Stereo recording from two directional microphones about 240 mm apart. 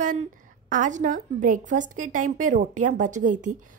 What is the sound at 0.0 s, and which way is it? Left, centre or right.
A woman's voice, right.